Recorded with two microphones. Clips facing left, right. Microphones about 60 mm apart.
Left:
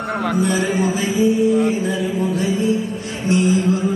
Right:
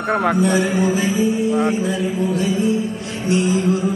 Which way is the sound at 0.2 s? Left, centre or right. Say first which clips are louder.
Even; right.